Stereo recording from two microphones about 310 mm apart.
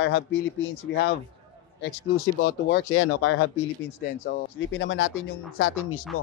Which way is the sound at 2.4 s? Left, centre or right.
Left.